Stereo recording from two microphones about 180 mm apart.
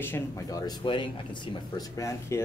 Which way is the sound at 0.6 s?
25° left (ahead or behind).